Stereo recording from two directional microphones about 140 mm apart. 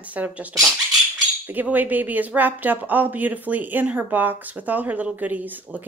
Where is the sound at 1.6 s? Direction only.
10° right (ahead or behind).